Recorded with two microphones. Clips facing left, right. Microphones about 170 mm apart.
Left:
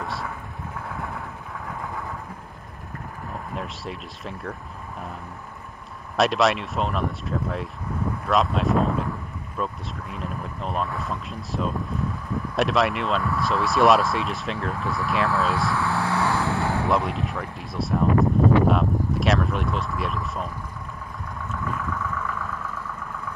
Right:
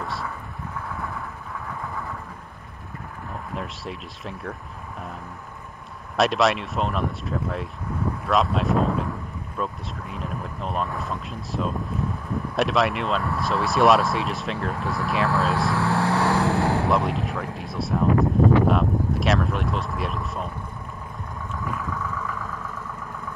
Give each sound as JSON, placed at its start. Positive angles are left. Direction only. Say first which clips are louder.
{"t": 0.0, "sound": "thunder", "louder": "even", "side_deg": 0}
{"t": 3.5, "sound": "speech", "louder": "right 1 dB", "side_deg": 0}
{"t": 6.1, "sound": "speech", "louder": "even", "side_deg": 0}
{"t": 16.3, "sound": "vehicle", "louder": "right 3 dB", "side_deg": -40}
{"t": 16.8, "sound": "speech", "louder": "right 1 dB", "side_deg": 0}
{"t": 21.9, "sound": "vehicle", "louder": "left 1 dB", "side_deg": -20}